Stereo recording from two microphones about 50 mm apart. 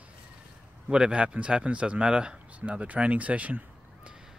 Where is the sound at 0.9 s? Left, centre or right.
Right.